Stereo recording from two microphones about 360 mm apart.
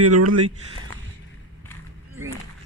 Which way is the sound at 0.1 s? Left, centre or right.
Right.